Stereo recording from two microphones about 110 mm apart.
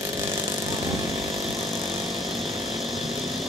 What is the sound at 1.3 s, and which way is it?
Power tool, centre (ahead or behind).